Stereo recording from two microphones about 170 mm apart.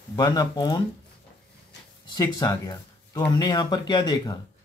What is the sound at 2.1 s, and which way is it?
Speech, 20° left (ahead or behind).